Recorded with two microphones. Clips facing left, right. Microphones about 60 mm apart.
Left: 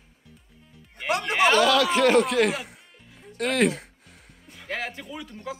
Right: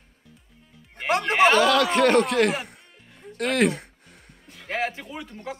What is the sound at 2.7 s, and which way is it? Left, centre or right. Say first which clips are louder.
Music: even; centre.